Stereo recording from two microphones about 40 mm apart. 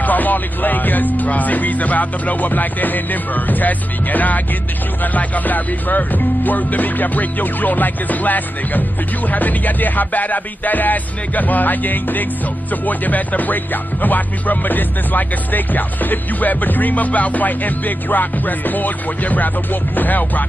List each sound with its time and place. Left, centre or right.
0.0 s music: left